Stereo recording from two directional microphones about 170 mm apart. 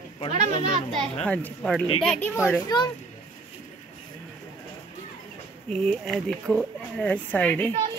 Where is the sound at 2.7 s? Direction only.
25° left (ahead or behind).